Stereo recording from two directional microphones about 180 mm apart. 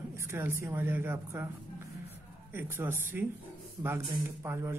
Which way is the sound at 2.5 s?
10° right (ahead or behind).